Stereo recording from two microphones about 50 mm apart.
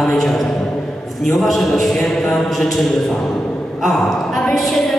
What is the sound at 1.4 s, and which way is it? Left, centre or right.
A man's voice, centre.